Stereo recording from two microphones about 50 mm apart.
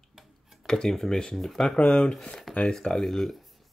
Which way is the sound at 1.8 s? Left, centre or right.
Left.